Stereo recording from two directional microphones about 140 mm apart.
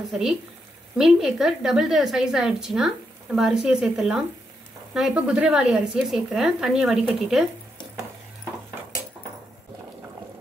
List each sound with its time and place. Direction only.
0.1 s speech: centre (ahead or behind)